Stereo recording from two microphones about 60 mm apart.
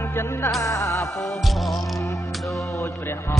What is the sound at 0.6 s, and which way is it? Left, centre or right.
Music, left.